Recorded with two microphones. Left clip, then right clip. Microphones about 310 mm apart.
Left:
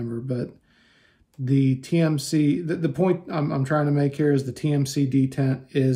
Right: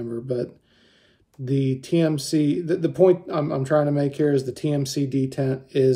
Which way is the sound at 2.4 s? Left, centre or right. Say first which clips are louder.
Right 1 dB; centre.